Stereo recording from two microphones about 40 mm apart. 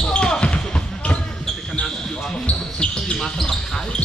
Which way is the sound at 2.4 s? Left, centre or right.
Left.